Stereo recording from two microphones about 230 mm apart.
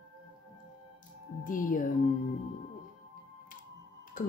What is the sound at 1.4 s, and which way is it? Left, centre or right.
Speech, left.